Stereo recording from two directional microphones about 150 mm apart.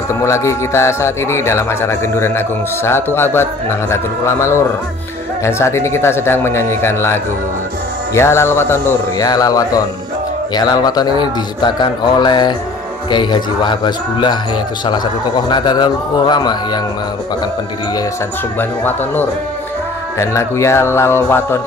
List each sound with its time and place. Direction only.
0.2 s a man's voice: 20° left (ahead or behind)
18.6 s speech: 10° left (ahead or behind)